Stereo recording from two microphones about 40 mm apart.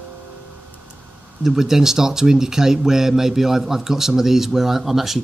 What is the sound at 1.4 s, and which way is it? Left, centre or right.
Speech, centre.